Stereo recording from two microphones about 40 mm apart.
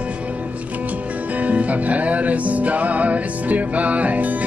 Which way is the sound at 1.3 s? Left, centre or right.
Right.